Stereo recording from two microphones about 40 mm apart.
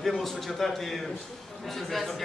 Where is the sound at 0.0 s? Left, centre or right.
Centre.